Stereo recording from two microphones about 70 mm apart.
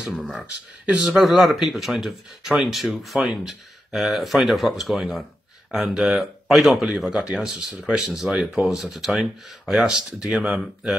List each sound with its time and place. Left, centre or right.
0.1 s speech: centre